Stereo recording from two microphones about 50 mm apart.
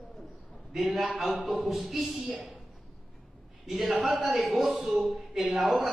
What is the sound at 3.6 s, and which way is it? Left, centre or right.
A man's voice, centre.